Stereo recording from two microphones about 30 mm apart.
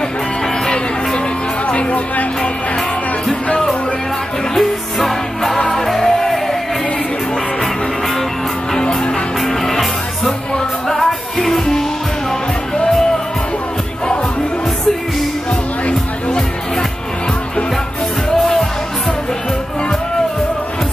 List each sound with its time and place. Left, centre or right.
1.7 s music: left
4.6 s music: centre
9.4 s music: centre